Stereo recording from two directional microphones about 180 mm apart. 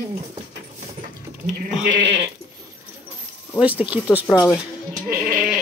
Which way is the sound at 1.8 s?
75° right (ahead or behind).